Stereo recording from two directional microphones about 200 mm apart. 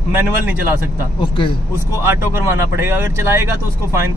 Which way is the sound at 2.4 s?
10° right (ahead or behind).